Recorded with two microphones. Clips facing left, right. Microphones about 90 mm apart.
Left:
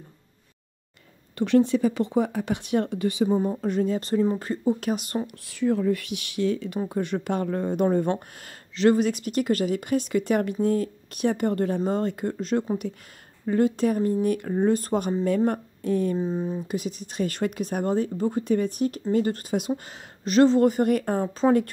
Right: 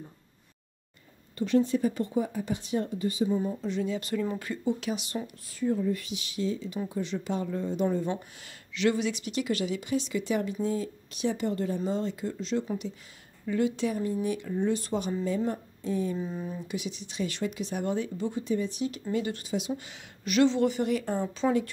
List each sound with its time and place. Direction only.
1.4 s speech: 70° left (ahead or behind)
3.3 s speech: 50° left (ahead or behind)
5.5 s speech: 80° left
6.9 s speech: 55° left (ahead or behind)
13.5 s speech: 45° left (ahead or behind)
15.2 s speech: 60° left (ahead or behind)
16.2 s speech: 30° left (ahead or behind)
16.6 s speech: 45° left (ahead or behind)
19.7 s speech: 35° left (ahead or behind)